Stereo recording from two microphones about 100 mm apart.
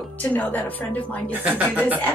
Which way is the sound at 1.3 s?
15° right (ahead or behind).